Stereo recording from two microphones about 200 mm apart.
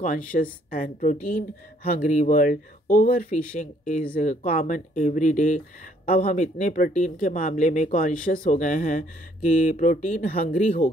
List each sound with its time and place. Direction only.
0.0 s speech: 45° left (ahead or behind)